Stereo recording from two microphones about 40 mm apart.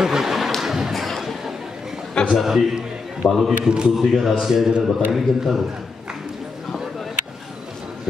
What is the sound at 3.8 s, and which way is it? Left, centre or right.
Speech, centre.